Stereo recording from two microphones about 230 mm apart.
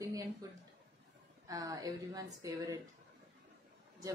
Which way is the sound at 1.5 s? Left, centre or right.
Centre.